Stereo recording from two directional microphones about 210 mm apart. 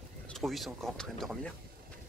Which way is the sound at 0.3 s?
Centre (ahead or behind).